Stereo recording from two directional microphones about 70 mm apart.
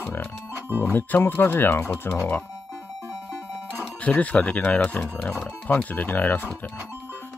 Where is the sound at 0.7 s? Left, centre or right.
Right.